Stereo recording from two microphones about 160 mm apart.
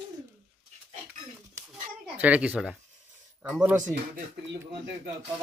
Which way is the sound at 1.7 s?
10° right (ahead or behind).